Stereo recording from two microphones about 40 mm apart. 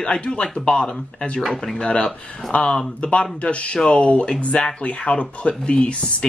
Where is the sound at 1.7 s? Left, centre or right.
Left.